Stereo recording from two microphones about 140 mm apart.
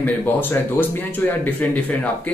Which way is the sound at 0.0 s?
15° left (ahead or behind).